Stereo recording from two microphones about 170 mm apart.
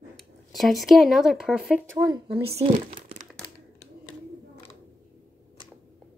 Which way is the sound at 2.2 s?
35° right (ahead or behind).